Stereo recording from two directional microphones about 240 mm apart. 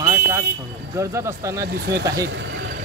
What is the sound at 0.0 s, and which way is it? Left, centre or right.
Vehicle, centre.